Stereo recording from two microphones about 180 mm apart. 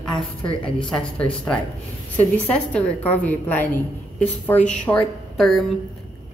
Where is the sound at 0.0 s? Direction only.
Centre (ahead or behind).